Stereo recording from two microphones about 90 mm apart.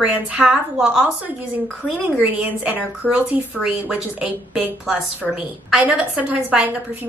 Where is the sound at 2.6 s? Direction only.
15° right (ahead or behind).